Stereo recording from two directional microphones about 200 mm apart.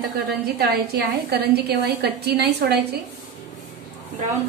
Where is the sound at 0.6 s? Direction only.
50° right (ahead or behind).